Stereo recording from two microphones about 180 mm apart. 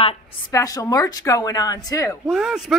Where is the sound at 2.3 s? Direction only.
Centre (ahead or behind).